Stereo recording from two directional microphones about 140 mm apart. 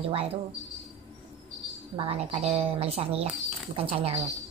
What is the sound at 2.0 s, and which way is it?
A woman's voice, 45° right (ahead or behind).